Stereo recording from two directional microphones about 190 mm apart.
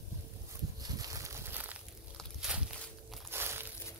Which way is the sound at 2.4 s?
5° right (ahead or behind).